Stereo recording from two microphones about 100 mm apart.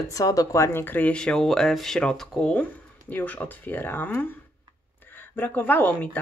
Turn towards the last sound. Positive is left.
turn(degrees=20)  # may be behind; listen again after turning